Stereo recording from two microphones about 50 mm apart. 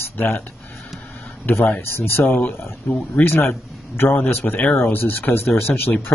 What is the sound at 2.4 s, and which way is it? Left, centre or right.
Speech, left.